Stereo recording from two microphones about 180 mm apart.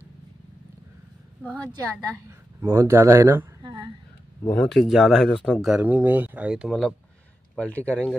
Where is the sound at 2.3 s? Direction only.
15° right (ahead or behind).